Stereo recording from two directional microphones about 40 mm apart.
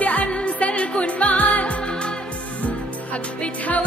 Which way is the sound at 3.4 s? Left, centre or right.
Left.